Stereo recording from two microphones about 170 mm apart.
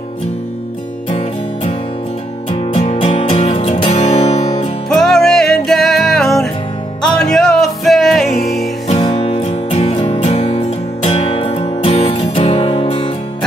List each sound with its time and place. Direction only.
2.5 s music: 35° left (ahead or behind)
4.8 s music: 5° left (ahead or behind)
8.9 s music: 30° left (ahead or behind)